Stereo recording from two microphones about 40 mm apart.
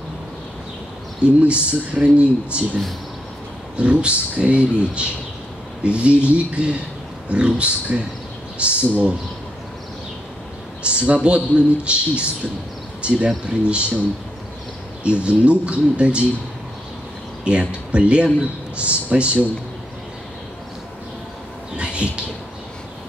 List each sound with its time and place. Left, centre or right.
1.4 s speech: right
10.8 s speech: right
15.0 s speech: right
17.5 s speech: right
21.7 s a sound: right